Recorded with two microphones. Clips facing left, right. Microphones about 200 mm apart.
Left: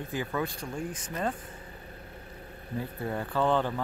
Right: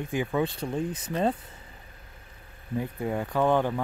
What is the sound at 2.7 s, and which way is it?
Speech, 15° right (ahead or behind).